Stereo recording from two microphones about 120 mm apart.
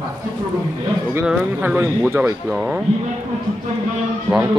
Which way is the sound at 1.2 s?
10° right (ahead or behind).